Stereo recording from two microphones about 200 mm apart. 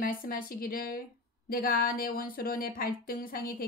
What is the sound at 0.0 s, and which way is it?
Speech, 45° left (ahead or behind).